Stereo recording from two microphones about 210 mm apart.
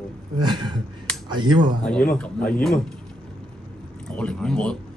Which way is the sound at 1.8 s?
5° left (ahead or behind).